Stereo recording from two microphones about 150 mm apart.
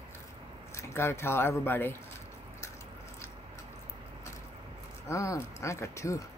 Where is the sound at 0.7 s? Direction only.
15° left (ahead or behind).